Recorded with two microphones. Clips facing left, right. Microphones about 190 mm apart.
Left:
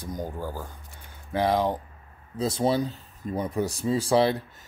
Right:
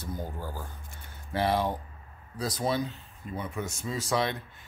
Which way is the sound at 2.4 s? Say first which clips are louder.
Left 5 dB; 25° left (ahead or behind).